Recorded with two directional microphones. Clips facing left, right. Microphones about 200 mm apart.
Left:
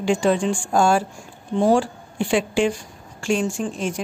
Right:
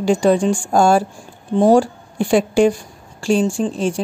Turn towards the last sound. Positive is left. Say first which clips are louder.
# right 6 dB
turn(degrees=-30)  # may be behind; listen again after turning